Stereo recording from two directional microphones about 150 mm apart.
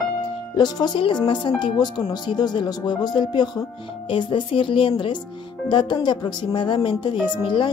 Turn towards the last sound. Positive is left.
turn(degrees=35)  # may be behind; listen again after turning